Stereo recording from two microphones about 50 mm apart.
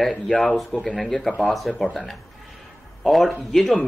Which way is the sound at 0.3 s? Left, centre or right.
Centre.